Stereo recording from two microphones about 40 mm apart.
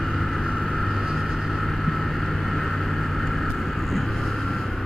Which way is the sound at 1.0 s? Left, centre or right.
Centre.